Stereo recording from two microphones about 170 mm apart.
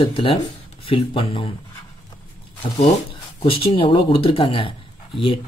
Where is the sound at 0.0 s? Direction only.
30° left (ahead or behind).